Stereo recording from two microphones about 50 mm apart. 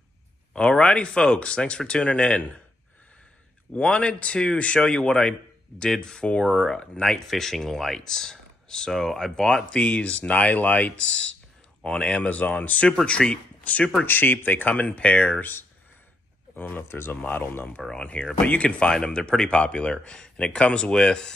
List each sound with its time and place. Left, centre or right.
0.5 s speech: left
3.8 s speech: left
7.0 s speech: centre
12.2 s speech: left
13.2 s speech: centre
13.7 s speech: left
14.0 s speech: left
16.5 s speech: left
16.8 s speech: left
17.9 s speech: left